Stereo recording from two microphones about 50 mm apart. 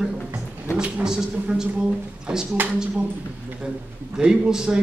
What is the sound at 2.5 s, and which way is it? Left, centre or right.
Speech, right.